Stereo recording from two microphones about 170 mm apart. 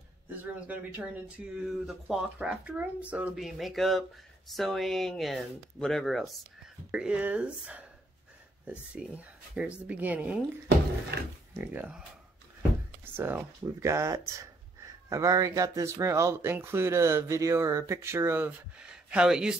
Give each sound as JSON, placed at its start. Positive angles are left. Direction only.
{"t": 0.3, "sound": "speech", "side_deg": -10}
{"t": 8.9, "sound": "speech", "side_deg": -5}
{"t": 11.5, "sound": "speech", "side_deg": -10}
{"t": 13.0, "sound": "speech", "side_deg": -15}